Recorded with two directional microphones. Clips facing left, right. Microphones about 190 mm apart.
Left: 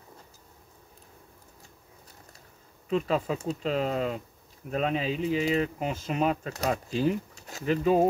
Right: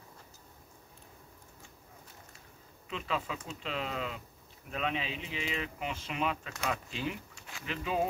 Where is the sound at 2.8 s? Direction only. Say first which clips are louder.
Left 9 dB; 40° left (ahead or behind).